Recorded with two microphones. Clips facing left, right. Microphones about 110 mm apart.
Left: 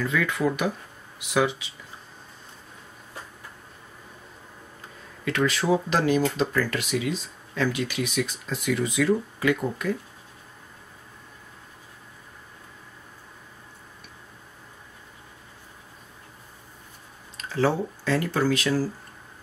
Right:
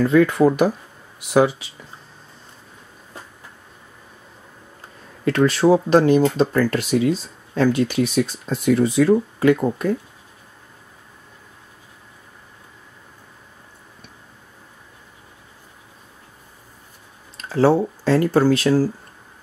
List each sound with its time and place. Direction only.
0.0 s speech: 40° right (ahead or behind)
5.2 s speech: 35° right (ahead or behind)
17.5 s speech: 35° right (ahead or behind)